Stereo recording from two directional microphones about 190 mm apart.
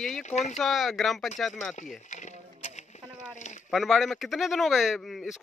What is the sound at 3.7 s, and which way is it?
Speech, centre (ahead or behind).